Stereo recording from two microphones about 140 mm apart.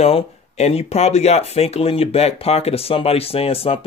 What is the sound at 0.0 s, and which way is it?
Speech, 45° left (ahead or behind).